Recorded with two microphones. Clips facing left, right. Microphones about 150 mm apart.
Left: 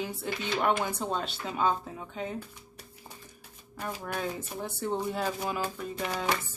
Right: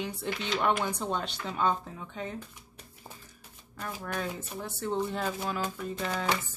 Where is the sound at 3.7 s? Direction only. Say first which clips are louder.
Left 1 dB; 10° left (ahead or behind).